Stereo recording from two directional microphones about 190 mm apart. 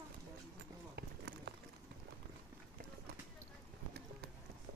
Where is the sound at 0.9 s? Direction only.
60° right (ahead or behind).